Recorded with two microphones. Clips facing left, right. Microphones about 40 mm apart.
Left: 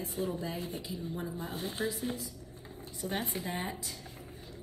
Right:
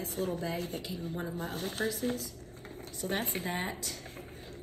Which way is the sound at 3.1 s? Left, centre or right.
Right.